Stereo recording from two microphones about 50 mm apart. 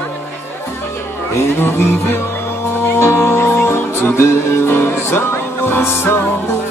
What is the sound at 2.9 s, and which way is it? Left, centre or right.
Music, left.